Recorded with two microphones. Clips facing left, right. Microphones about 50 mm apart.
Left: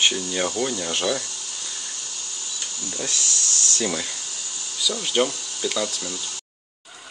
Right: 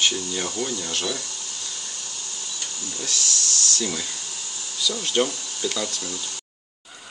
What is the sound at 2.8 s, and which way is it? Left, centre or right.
Speech, centre.